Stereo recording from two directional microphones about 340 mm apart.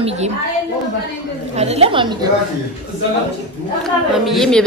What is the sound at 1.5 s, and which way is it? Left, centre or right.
Speech, centre.